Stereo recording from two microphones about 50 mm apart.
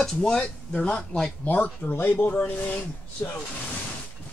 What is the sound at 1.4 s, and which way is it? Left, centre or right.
Speech, left.